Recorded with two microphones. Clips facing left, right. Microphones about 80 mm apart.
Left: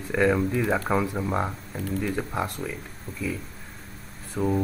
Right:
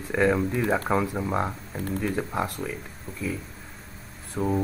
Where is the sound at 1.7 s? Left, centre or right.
Right.